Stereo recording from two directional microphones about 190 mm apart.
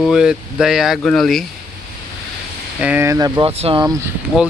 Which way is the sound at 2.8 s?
10° right (ahead or behind).